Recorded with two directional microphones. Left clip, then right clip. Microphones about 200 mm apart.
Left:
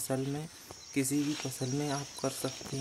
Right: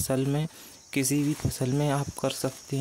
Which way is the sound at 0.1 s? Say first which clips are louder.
Right 7 dB; 45° right (ahead or behind).